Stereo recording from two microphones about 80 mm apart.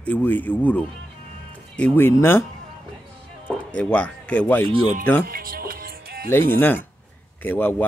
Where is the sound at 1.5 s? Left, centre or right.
Centre.